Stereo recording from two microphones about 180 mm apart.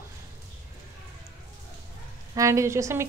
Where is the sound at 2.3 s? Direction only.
15° right (ahead or behind).